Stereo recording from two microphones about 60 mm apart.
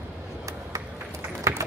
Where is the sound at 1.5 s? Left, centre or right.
Right.